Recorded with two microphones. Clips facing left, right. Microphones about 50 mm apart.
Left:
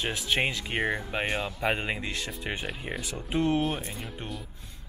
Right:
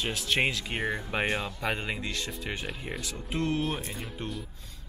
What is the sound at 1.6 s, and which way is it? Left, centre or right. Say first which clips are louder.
Speech: left 3 dB; centre.